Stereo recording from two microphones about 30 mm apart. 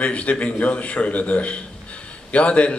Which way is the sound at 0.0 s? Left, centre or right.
Left.